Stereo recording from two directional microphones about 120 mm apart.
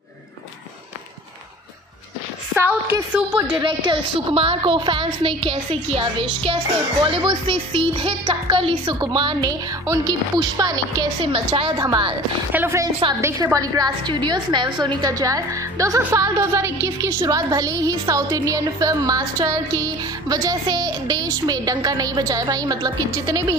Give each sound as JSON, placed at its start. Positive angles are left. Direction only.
{"t": 3.6, "sound": "a woman's voice", "side_deg": -45}
{"t": 11.3, "sound": "a woman's voice", "side_deg": -50}
{"t": 12.5, "sound": "speech", "side_deg": -25}